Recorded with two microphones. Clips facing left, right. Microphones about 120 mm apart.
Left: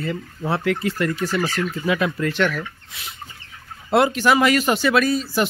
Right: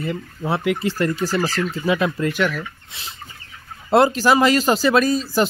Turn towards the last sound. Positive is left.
turn(degrees=-35)  # may be behind; listen again after turning